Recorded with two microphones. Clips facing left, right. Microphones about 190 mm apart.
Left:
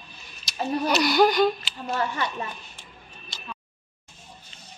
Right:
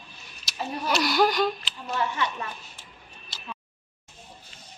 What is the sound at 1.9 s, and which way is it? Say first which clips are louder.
Speech: left 1 dB; 45° left (ahead or behind).